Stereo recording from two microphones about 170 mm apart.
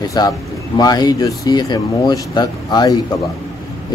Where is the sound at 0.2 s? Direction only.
25° left (ahead or behind).